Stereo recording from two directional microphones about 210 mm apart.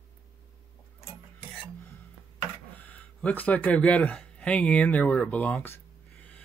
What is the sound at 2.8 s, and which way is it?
Speech, 5° left (ahead or behind).